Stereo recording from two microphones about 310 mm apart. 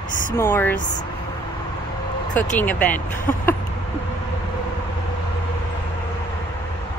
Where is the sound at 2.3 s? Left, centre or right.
Centre.